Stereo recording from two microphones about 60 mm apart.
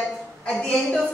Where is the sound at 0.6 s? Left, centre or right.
Centre.